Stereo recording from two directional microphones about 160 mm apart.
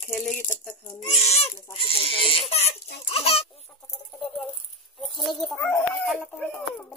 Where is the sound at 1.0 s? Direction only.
40° left (ahead or behind).